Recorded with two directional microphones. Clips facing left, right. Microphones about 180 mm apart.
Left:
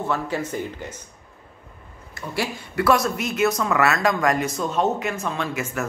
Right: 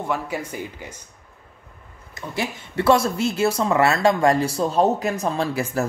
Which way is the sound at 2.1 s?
20° right (ahead or behind).